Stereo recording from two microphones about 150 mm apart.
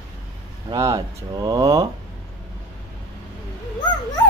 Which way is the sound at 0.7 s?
25° right (ahead or behind).